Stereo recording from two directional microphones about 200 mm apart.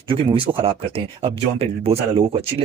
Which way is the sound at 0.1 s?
25° right (ahead or behind).